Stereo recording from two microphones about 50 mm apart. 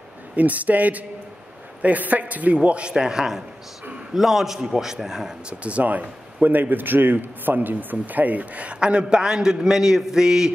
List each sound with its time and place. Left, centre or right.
0.4 s a man's voice: right; by 5.3 s centre
5.5 s a man's voice: right; by 10.5 s centre